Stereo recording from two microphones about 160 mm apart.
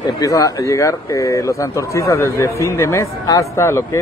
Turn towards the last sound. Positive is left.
turn(degrees=15)  # may be behind; listen again after turning